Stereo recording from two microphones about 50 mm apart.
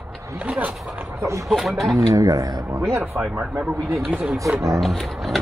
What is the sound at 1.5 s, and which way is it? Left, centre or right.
Speech, centre.